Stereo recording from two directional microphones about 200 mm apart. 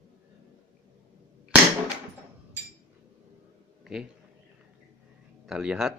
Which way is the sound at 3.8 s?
Centre (ahead or behind).